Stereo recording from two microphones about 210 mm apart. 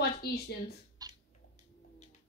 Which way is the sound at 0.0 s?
50° left (ahead or behind).